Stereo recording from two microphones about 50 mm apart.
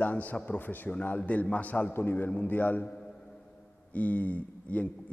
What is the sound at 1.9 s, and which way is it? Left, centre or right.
Speech, left.